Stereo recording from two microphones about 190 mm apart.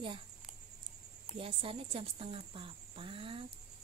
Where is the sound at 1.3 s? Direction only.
30° right (ahead or behind).